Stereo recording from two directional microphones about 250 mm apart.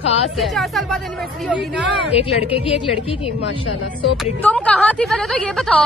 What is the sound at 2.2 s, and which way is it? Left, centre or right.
Speech, left.